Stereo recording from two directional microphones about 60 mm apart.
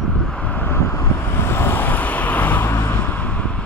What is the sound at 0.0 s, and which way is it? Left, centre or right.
Vehicle, centre.